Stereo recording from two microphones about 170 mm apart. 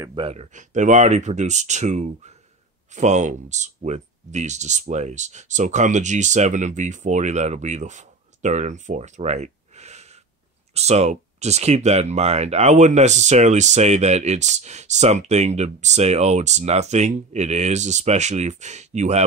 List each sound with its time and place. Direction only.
0.0 s speech: 30° right (ahead or behind)